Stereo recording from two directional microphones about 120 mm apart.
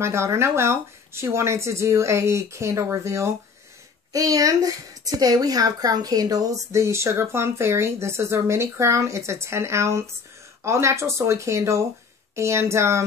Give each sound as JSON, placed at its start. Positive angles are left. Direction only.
{"t": 0.0, "sound": "a woman's voice", "side_deg": -20}